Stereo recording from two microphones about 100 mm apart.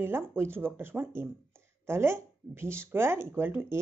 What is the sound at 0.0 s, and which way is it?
Speech, 25° right (ahead or behind).